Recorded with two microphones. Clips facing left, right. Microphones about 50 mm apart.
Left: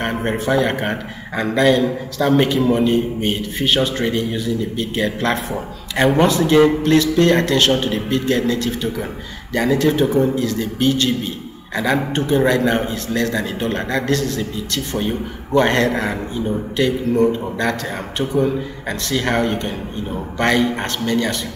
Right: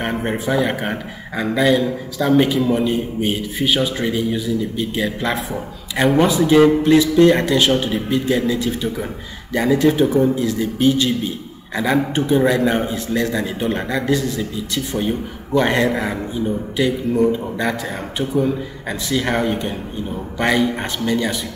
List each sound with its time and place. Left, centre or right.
0.0 s a man's voice: centre
6.2 s speech: centre
15.0 s a man's voice: centre